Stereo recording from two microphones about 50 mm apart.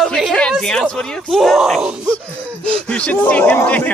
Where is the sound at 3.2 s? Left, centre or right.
Left.